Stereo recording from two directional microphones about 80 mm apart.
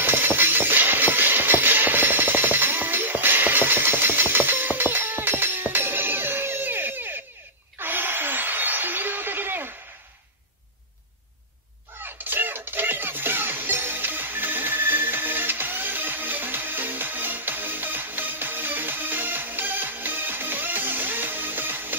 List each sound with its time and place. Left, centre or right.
0.0 s music: right
7.8 s a sound: right
12.0 s music: right